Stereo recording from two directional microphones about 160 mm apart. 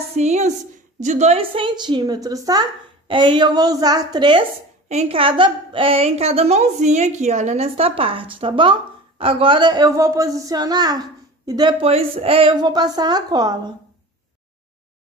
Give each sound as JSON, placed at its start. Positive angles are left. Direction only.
{"t": 0.1, "sound": "a woman's voice", "side_deg": -45}
{"t": 4.8, "sound": "a woman's voice", "side_deg": -40}